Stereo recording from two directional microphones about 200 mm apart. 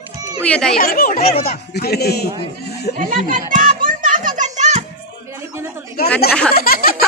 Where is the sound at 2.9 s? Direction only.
40° right (ahead or behind).